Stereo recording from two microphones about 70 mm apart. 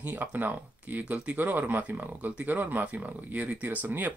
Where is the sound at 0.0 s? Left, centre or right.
Right.